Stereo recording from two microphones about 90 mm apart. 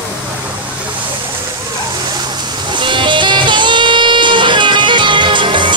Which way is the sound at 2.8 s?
65° right (ahead or behind).